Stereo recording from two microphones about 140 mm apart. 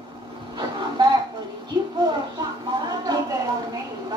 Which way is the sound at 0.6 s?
35° right (ahead or behind).